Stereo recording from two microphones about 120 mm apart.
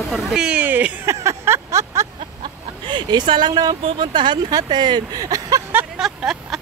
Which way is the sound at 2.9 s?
40° right (ahead or behind).